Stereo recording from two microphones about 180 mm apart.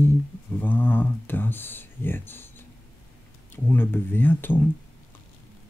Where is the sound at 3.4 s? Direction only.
10° left (ahead or behind).